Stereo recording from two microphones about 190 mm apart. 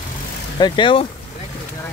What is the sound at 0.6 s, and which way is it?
Speech, 25° left (ahead or behind).